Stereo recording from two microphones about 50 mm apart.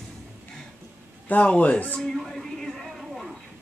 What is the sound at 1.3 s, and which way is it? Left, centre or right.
Speech, left.